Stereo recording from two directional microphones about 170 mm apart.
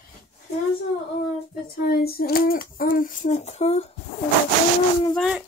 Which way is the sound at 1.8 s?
65° left (ahead or behind).